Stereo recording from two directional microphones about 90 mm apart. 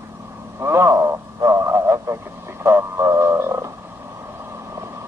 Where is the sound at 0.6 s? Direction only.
30° right (ahead or behind).